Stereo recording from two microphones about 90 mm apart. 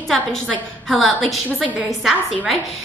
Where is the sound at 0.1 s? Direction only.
5° left (ahead or behind).